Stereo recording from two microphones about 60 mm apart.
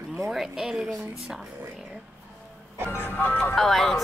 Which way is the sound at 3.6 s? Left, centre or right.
Centre.